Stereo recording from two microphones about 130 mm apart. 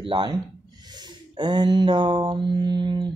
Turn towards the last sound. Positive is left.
turn(degrees=-35)  # may be behind; listen again after turning